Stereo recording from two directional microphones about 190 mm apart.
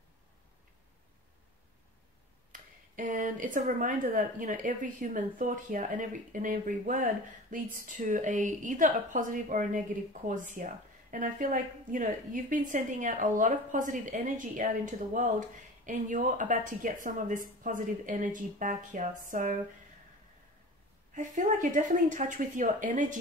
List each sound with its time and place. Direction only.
2.5 s a woman's voice: 45° right (ahead or behind)
21.4 s a woman's voice: 45° right (ahead or behind)